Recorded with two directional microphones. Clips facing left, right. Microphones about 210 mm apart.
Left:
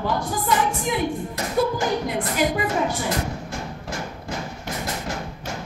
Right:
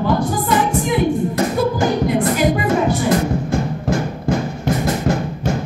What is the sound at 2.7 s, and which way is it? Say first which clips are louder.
Music: right 8 dB; 50° right (ahead or behind).